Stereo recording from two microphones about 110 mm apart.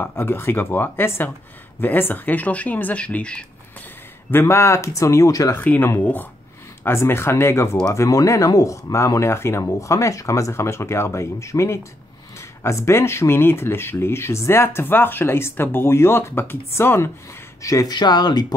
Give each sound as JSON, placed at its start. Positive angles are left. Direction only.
{"t": 0.0, "sound": "speech", "side_deg": 20}
{"t": 4.3, "sound": "speech", "side_deg": 20}
{"t": 5.5, "sound": "speech", "side_deg": 15}